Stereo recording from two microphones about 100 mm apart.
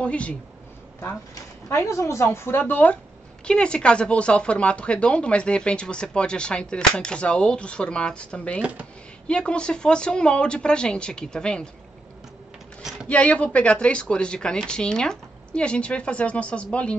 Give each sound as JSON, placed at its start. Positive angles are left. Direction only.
{"t": 0.0, "sound": "speech", "side_deg": 10}
{"t": 1.7, "sound": "speech", "side_deg": 30}
{"t": 13.1, "sound": "speech", "side_deg": 15}